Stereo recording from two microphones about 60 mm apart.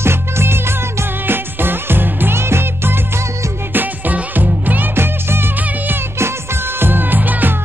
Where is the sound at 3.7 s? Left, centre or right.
Right.